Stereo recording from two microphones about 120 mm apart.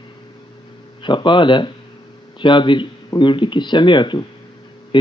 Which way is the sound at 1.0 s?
40° left (ahead or behind).